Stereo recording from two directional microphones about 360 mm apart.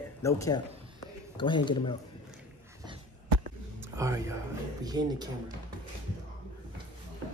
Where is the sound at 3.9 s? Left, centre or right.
Centre.